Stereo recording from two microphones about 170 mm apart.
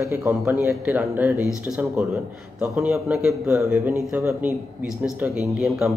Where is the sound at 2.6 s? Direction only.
10° right (ahead or behind).